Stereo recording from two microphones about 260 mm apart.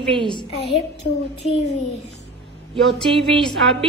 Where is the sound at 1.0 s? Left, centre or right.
Left.